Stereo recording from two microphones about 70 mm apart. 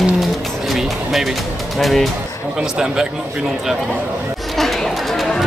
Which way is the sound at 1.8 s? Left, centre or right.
Centre.